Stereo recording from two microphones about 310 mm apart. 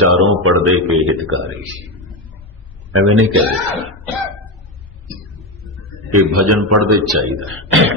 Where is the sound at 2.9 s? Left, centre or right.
Right.